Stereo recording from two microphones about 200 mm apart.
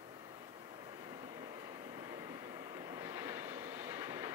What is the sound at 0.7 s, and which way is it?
Vehicle, 20° right (ahead or behind).